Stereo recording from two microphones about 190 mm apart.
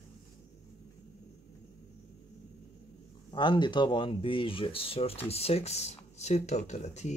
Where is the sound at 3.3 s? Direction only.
25° left (ahead or behind).